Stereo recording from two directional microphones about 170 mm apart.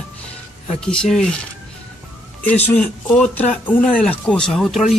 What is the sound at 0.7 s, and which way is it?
Speech, 5° left (ahead or behind).